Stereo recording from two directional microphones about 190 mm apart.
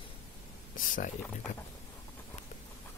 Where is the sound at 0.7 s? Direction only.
45° left (ahead or behind).